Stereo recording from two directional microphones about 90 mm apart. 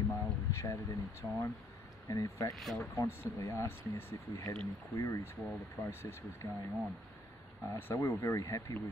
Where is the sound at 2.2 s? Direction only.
35° left (ahead or behind).